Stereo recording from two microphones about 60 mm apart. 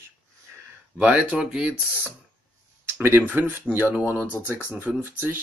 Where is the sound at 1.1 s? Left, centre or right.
Centre.